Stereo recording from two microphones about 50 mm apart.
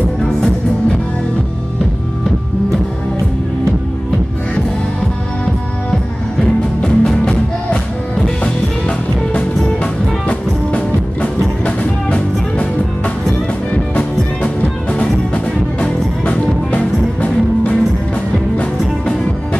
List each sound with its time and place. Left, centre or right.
6.4 s music: centre
10.2 s music: left
16.3 s music: left